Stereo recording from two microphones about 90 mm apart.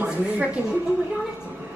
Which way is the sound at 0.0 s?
15° right (ahead or behind).